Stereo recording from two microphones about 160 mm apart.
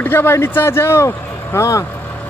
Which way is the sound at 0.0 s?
15° left (ahead or behind).